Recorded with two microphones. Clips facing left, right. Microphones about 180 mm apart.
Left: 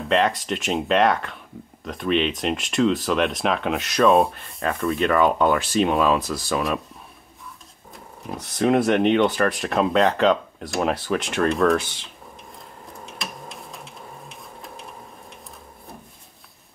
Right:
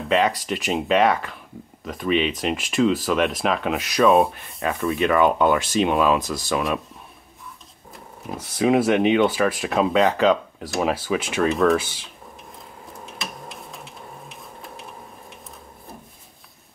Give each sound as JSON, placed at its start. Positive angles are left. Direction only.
{"t": 0.1, "sound": "speech", "side_deg": 0}
{"t": 8.2, "sound": "speech", "side_deg": 0}
{"t": 13.0, "sound": "tick-tock", "side_deg": 0}